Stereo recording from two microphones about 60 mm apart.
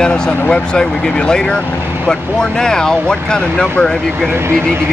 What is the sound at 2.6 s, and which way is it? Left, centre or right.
Speech, centre.